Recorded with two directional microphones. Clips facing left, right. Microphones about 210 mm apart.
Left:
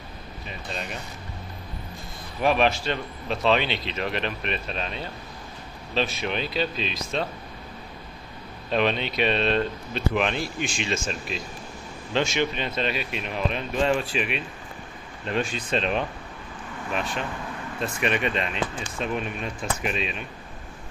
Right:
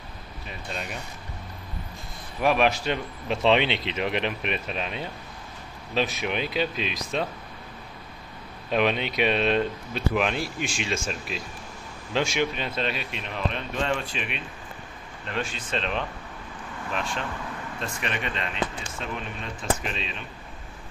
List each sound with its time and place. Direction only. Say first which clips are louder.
2.4 s speech: even; centre (ahead or behind)
2.8 s speech: right 1 dB; 15° right (ahead or behind)
8.7 s speech: even; 10° right (ahead or behind)
15.2 s speech: left 5 dB; 15° left (ahead or behind)
16.9 s speech: left 2 dB; centre (ahead or behind)
17.7 s speech: left 7 dB; 15° left (ahead or behind)
19.6 s speech: even; 10° left (ahead or behind)